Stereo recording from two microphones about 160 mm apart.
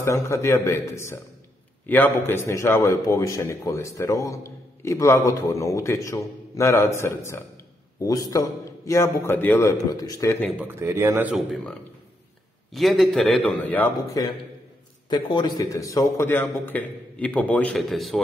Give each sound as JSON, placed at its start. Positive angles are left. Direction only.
{"t": 0.0, "sound": "a man's voice", "side_deg": 15}
{"t": 10.6, "sound": "a man's voice", "side_deg": -15}
{"t": 12.7, "sound": "a man's voice", "side_deg": 0}